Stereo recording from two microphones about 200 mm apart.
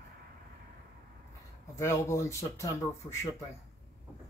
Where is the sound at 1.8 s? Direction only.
15° left (ahead or behind).